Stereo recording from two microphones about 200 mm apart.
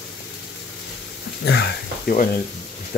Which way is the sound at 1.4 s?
55° left (ahead or behind).